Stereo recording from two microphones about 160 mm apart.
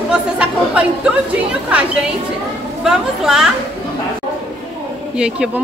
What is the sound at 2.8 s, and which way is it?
Speech, 5° right (ahead or behind).